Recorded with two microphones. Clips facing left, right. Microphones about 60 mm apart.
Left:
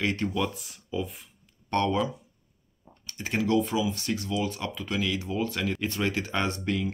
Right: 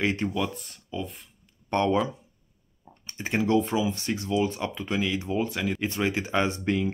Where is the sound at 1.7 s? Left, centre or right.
Centre.